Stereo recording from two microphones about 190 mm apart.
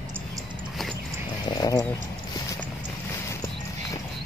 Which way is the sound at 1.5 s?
20° left (ahead or behind).